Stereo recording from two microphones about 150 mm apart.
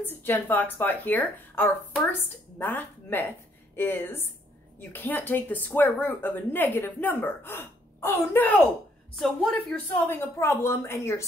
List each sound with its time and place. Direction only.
0.0 s speech: 15° left (ahead or behind)
9.1 s a woman's voice: centre (ahead or behind)
10.0 s speech: 15° left (ahead or behind)